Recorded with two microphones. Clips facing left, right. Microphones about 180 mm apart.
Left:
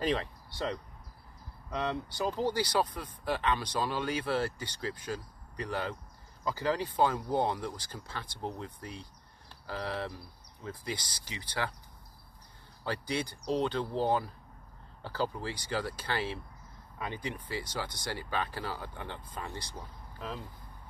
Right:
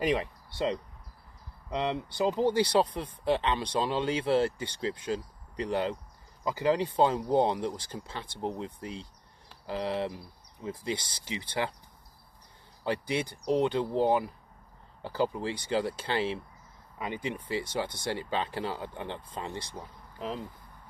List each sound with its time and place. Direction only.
0.0 s speech: 15° right (ahead or behind)
12.8 s speech: 20° right (ahead or behind)